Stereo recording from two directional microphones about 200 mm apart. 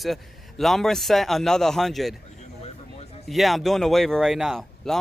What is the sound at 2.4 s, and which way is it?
Basketball bounce, 30° left (ahead or behind).